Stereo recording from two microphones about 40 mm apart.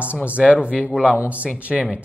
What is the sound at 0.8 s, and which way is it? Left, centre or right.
Speech, centre.